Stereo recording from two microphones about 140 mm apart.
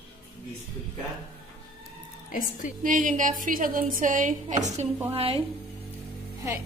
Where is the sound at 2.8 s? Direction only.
65° right (ahead or behind).